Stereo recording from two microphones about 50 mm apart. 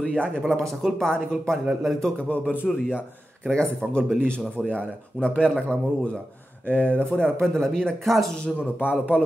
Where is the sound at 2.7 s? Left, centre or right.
Centre.